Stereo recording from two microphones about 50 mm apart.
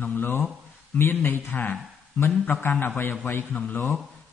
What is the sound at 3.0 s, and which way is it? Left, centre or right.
Speech, left.